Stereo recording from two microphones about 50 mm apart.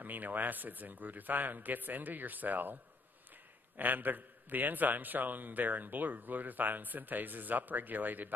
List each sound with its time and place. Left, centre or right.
0.0 s a man's voice: right